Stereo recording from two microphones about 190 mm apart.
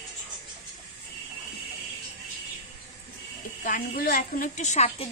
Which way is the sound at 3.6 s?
50° left (ahead or behind).